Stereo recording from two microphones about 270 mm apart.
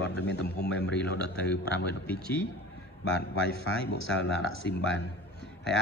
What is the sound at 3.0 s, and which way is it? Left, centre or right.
Speech, left.